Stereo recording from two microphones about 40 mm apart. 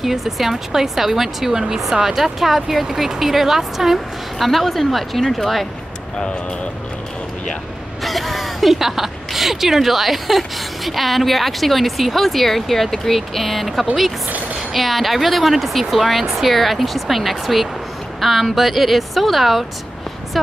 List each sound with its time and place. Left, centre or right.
0.0 s speech: centre
6.1 s speech: left
8.0 s speech: centre